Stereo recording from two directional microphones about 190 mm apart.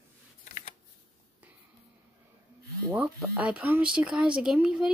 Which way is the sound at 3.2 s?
5° right (ahead or behind).